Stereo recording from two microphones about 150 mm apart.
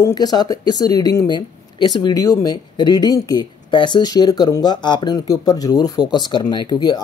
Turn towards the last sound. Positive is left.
turn(degrees=30)  # may be behind; listen again after turning